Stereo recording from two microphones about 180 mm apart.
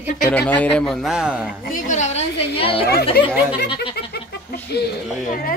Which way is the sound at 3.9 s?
65° left (ahead or behind).